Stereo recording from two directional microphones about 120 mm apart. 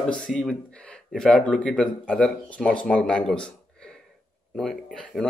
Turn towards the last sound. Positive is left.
turn(degrees=5)  # may be behind; listen again after turning